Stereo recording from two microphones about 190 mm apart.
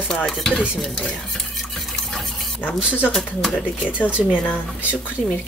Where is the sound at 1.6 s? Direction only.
Centre (ahead or behind).